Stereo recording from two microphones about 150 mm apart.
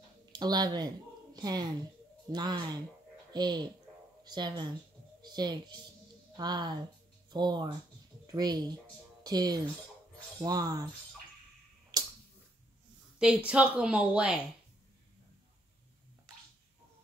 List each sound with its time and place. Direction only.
0.3 s a woman's voice: 25° right (ahead or behind)
11.9 s a sound: 25° right (ahead or behind)
13.5 s speech: 5° right (ahead or behind)